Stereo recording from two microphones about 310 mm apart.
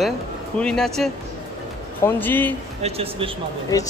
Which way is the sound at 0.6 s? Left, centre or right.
Centre.